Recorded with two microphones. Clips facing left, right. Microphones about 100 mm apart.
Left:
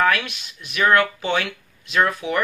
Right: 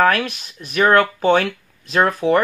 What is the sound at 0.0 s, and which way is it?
Speech, 40° right (ahead or behind).